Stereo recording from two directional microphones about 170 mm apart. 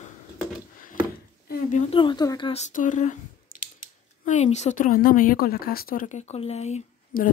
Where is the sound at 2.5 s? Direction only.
45° left (ahead or behind).